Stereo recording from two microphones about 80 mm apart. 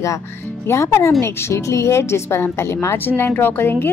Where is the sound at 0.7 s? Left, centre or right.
Left.